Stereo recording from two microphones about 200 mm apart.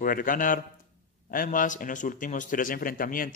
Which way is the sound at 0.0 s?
45° left (ahead or behind).